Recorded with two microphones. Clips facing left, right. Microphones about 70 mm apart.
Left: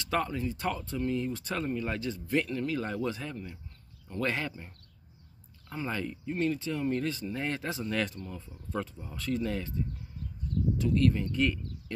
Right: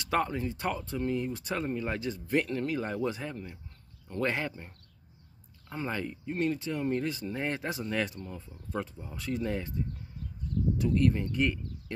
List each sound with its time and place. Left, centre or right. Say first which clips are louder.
0.0 s speech: right 1 dB; right
5.8 s speech: even; right